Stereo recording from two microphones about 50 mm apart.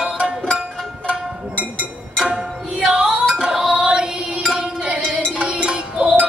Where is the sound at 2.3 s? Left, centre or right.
Centre.